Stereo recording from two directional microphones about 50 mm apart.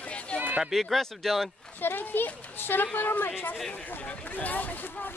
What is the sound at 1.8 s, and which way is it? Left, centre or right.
Speech, left.